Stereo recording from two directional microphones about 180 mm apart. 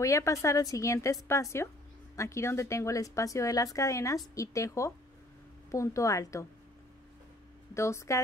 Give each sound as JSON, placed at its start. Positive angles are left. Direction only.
{"t": 0.0, "sound": "speech", "side_deg": 15}
{"t": 7.7, "sound": "speech", "side_deg": 15}